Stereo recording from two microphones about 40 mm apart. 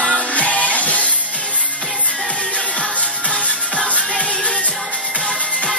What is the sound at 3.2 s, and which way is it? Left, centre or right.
Music, left.